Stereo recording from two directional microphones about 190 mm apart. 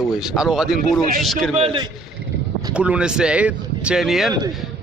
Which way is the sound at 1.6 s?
30° right (ahead or behind).